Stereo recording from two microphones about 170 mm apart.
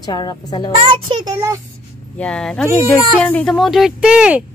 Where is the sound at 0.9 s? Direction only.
25° right (ahead or behind).